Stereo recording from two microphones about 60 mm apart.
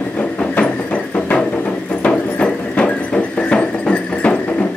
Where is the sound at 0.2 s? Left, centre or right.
Left.